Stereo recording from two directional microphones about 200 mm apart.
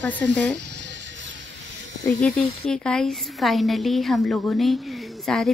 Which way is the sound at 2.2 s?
5° left (ahead or behind).